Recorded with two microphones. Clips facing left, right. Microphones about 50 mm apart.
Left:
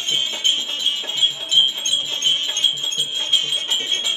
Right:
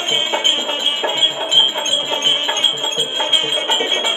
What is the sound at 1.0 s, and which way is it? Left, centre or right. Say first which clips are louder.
Wind chime: right 5 dB; right.